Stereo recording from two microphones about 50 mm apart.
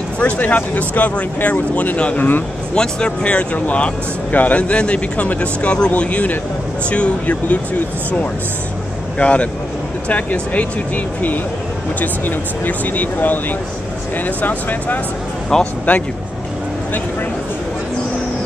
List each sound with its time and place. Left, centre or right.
0.2 s speech: left
2.1 s speech: left
2.7 s speech: centre
3.5 s speech: left
9.2 s speech: left
12.0 s speech: left